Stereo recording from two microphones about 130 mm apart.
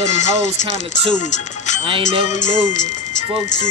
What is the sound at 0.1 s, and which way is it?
Speech, 65° left (ahead or behind).